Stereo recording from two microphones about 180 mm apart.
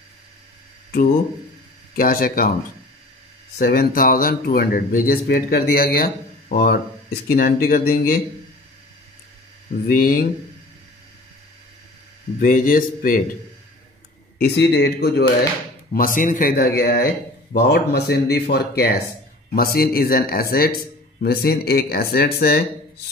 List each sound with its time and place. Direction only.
2.0 s speech: 55° left (ahead or behind)
3.5 s speech: 55° left (ahead or behind)
9.8 s speech: 55° left (ahead or behind)
12.4 s speech: 50° left (ahead or behind)
14.4 s speech: 65° left (ahead or behind)
15.9 s speech: 50° left (ahead or behind)